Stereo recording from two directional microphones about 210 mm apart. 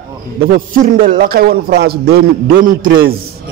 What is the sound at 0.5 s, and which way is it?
A man's voice, 45° right (ahead or behind).